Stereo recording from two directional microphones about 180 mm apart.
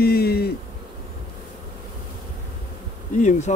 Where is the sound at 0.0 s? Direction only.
60° left (ahead or behind).